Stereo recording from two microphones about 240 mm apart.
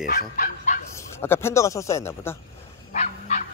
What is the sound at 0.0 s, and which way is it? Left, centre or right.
Bow-wow, left.